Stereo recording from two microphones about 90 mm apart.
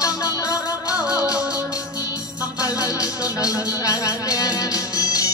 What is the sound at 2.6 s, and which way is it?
Music, 40° left (ahead or behind).